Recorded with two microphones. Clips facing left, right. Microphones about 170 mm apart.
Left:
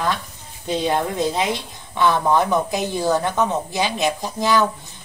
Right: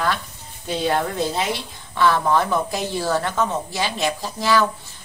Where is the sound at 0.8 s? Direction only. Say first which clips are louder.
Even; 20° left (ahead or behind).